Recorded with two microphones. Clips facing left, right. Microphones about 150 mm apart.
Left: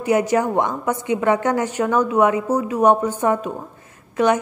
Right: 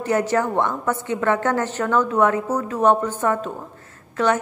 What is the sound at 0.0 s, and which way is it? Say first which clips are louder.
A woman's voice: left 2 dB; 15° left (ahead or behind).